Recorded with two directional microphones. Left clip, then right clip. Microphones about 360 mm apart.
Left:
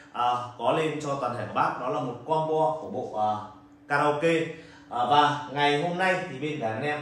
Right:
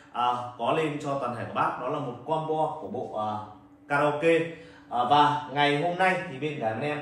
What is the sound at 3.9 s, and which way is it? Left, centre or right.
A man's voice, centre.